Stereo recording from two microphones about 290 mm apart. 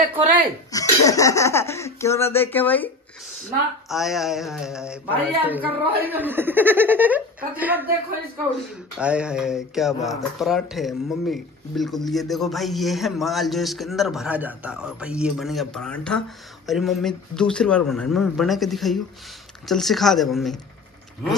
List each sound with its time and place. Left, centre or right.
0.7 s speech: centre
3.9 s speech: centre
8.9 s speech: centre